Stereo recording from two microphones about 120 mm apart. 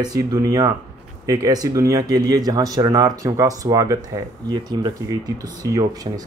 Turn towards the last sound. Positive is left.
turn(degrees=-30)  # may be behind; listen again after turning